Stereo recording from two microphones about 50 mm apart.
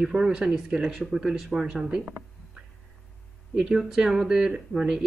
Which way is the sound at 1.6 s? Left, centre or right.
Centre.